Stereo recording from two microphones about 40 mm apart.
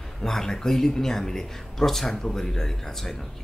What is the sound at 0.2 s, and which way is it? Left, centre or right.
Speech, centre.